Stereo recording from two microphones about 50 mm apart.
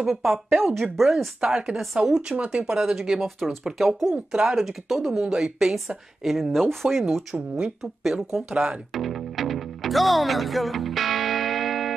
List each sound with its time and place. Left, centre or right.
0.0 s a woman's voice: centre
2.3 s speech: right
2.6 s a woman's voice: centre
4.1 s a woman's voice: centre
4.6 s speech: centre
5.2 s a woman's voice: centre
6.5 s speech: centre
7.3 s speech: right
7.8 s speech: centre
8.9 s music: centre